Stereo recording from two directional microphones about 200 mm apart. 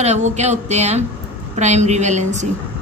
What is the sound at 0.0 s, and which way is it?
Speech, 35° right (ahead or behind).